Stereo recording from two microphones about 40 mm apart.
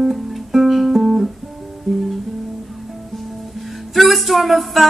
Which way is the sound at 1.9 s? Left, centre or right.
Centre.